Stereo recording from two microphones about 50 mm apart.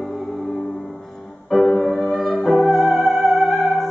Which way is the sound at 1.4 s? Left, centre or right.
Centre.